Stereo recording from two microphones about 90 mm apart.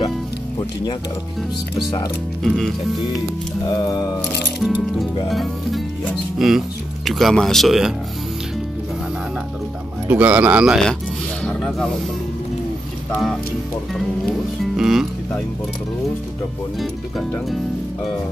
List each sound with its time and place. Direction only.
2.4 s speech: 5° left (ahead or behind)
3.6 s music: 40° left (ahead or behind)
4.6 s speech: 5° right (ahead or behind)
10.0 s speech: 15° right (ahead or behind)
11.4 s snake: 10° left (ahead or behind)
13.9 s speech: centre (ahead or behind)